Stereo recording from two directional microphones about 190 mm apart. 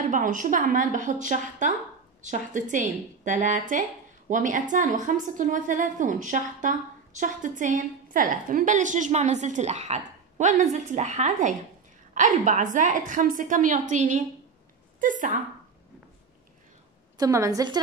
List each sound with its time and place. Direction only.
0.1 s a woman's voice: 45° right (ahead or behind)
17.2 s a woman's voice: 15° right (ahead or behind)